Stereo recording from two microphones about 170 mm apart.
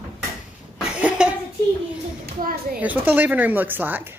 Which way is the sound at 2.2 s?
60° right (ahead or behind).